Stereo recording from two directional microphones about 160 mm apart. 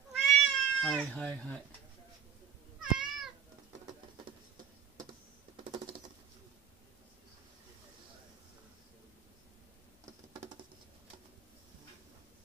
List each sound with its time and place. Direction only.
0.3 s cat: 5° left (ahead or behind)
2.8 s cat: 5° right (ahead or behind)
5.6 s typing: 30° right (ahead or behind)